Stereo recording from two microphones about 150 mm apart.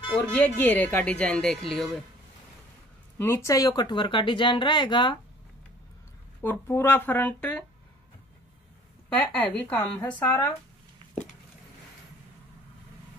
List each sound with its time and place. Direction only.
0.3 s speech: 10° left (ahead or behind)
3.2 s speech: 15° left (ahead or behind)
6.4 s speech: 15° left (ahead or behind)
9.1 s speech: 10° left (ahead or behind)